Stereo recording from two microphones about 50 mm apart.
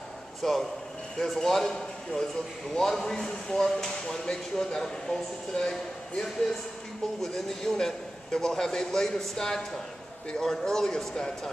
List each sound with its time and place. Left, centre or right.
0.4 s speech: centre